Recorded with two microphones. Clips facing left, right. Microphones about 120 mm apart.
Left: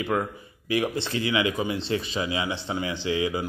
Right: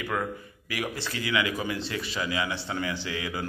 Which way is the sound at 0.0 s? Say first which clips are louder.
Left 4 dB; 25° left (ahead or behind).